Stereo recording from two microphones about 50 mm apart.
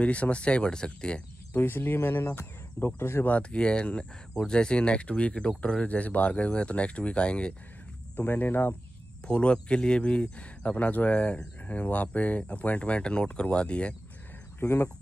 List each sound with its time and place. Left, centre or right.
0.0 s speech: left
1.5 s speech: left
3.3 s speech: left
8.2 s speech: left
9.2 s speech: left